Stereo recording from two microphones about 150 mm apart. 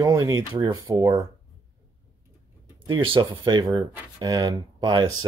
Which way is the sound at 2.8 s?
35° right (ahead or behind).